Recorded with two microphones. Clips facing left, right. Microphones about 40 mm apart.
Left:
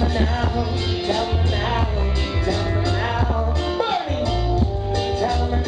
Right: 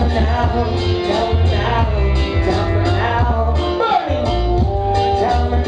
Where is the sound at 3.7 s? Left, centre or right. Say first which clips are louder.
Right 7 dB; right.